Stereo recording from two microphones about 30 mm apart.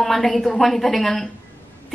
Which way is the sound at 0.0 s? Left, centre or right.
Centre.